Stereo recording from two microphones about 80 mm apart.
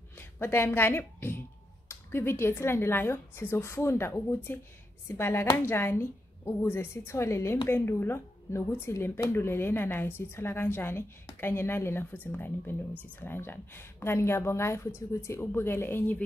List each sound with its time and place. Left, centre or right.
0.2 s a woman's voice: left